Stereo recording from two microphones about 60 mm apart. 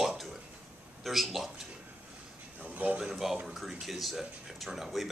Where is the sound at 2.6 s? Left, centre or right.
Right.